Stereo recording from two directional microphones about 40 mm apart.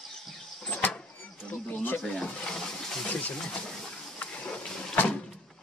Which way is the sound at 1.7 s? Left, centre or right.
Left.